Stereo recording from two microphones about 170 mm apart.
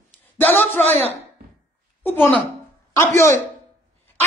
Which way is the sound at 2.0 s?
10° left (ahead or behind).